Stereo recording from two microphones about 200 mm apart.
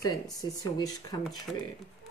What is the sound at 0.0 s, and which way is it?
Speech, 20° left (ahead or behind).